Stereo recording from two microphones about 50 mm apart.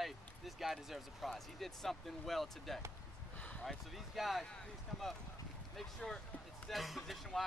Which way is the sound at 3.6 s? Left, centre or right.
Centre.